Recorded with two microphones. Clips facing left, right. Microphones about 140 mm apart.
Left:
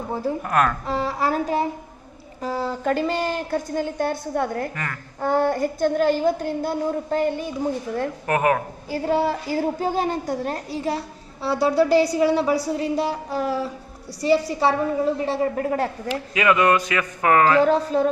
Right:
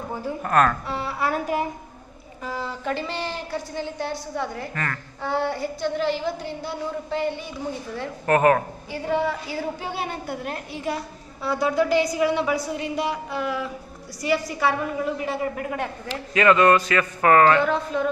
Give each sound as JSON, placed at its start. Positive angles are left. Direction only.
{"t": 0.1, "sound": "a woman's voice", "side_deg": 35}
{"t": 0.4, "sound": "a man's voice", "side_deg": 5}
{"t": 0.8, "sound": "a woman's voice", "side_deg": 35}
{"t": 8.3, "sound": "a man's voice", "side_deg": 10}
{"t": 8.9, "sound": "a woman's voice", "side_deg": 35}
{"t": 16.1, "sound": "a man's voice", "side_deg": 10}
{"t": 17.6, "sound": "a woman's voice", "side_deg": 35}